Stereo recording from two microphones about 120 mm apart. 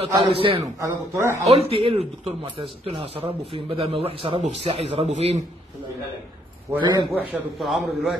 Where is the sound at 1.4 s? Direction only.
60° right (ahead or behind).